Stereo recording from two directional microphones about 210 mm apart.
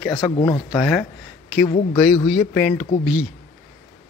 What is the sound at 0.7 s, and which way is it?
Speech, 5° left (ahead or behind).